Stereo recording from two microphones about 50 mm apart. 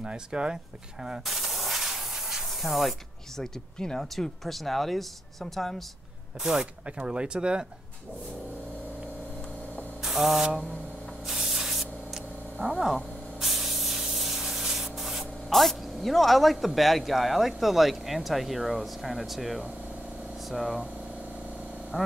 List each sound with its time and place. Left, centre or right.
0.0 s speech: centre
1.2 s spray: centre
3.7 s speech: centre
4.0 s speech: centre
6.4 s speech: centre
10.0 s spray: centre
20.4 s speech: centre
21.9 s speech: centre